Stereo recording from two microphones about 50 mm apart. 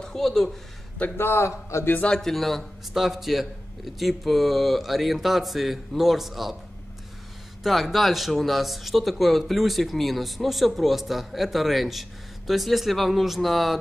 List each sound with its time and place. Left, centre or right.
0.0 s speech: centre
1.1 s a man's voice: left
2.1 s speech: centre
7.6 s speech: centre